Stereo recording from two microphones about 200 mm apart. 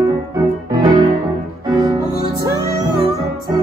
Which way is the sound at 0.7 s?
20° right (ahead or behind).